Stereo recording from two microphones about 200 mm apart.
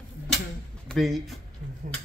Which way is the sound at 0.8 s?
Centre (ahead or behind).